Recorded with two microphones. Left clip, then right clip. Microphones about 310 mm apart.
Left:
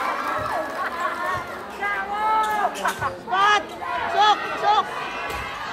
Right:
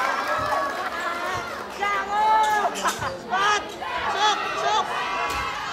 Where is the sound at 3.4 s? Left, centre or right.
Left.